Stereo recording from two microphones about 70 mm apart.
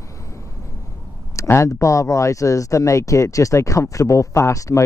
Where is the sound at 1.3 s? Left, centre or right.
Left.